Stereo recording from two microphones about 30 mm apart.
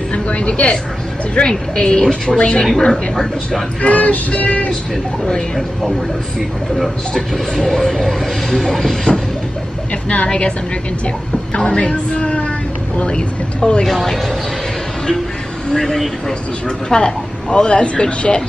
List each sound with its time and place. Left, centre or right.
0.1 s a sound: left
1.4 s a woman's voice: left
2.9 s train: centre
3.8 s speech: left
7.5 s train: centre
10.0 s speech: left
11.5 s speech: left
13.8 s train: centre
15.7 s speech: left